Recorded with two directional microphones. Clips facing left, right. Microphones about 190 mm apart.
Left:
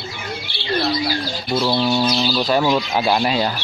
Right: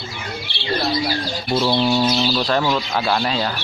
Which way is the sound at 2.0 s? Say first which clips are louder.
Right 1 dB; 5° right (ahead or behind).